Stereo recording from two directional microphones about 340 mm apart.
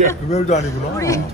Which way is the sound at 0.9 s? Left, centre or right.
Centre.